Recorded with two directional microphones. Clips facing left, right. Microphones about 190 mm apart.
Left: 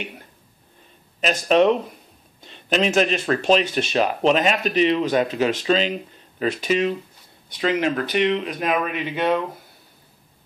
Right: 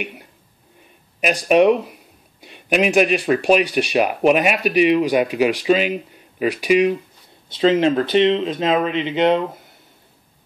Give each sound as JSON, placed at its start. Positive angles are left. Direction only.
{"t": 1.2, "sound": "speech", "side_deg": -10}
{"t": 7.4, "sound": "speech", "side_deg": -25}